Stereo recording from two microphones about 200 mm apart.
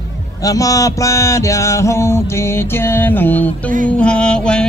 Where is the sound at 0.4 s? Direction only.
15° left (ahead or behind).